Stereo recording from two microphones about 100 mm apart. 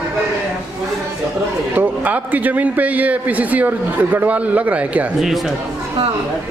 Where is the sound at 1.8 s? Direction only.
15° right (ahead or behind).